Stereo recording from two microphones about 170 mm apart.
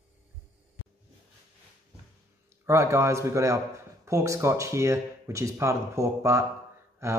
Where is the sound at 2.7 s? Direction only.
15° right (ahead or behind).